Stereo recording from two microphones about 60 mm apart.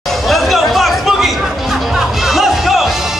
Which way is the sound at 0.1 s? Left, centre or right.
Centre.